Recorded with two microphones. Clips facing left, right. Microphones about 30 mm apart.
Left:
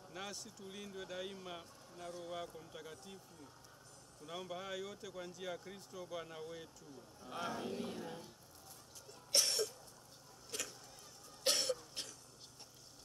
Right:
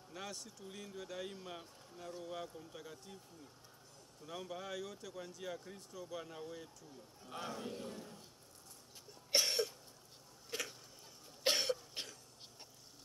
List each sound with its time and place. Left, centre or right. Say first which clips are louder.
0.1 s speech: even; centre
4.3 s speech: even; centre
7.8 s a man's voice: left 3 dB; left
9.3 s cough: right 1 dB; centre
10.5 s a sound: right 3 dB; centre
11.4 s cough: right 2 dB; centre